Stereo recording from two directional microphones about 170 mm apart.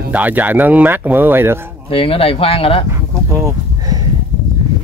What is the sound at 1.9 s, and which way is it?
Speech, 30° left (ahead or behind).